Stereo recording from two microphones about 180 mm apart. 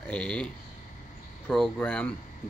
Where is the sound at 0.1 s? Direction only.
5° left (ahead or behind).